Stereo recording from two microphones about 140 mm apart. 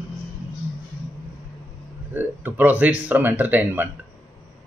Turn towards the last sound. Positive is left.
turn(degrees=-15)  # may be behind; listen again after turning